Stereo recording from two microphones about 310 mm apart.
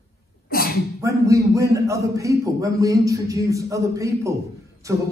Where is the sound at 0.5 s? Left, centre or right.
Left.